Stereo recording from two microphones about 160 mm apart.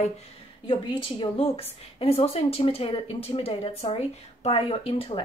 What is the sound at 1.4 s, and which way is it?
A woman's voice, 40° left (ahead or behind).